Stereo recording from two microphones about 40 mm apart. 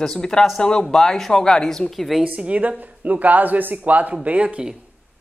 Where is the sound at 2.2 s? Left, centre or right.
Right.